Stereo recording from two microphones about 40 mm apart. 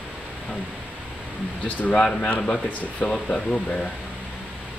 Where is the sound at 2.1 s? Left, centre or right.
Left.